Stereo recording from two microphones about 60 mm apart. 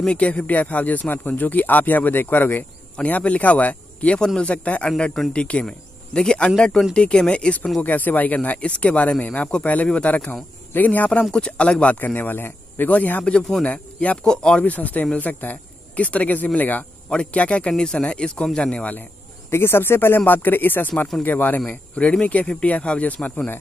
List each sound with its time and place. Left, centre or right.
0.2 s speech: left
3.0 s a man's voice: left
7.8 s speech: left
11.3 s speech: centre
13.2 s a man's voice: centre
14.6 s a man's voice: left
19.5 s speech: left